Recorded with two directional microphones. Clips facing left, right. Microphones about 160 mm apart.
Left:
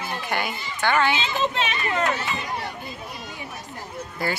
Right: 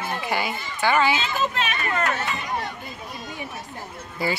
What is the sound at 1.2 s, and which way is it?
Speech, 25° left (ahead or behind).